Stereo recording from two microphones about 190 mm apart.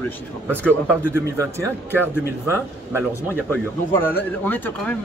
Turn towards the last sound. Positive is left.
turn(degrees=10)  # may be behind; listen again after turning